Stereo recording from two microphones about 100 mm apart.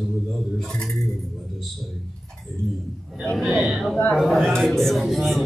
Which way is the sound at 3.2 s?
Centre (ahead or behind).